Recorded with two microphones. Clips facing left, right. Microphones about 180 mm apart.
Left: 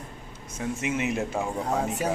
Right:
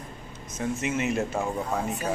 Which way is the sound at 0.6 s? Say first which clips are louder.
Right 1 dB; 15° left (ahead or behind).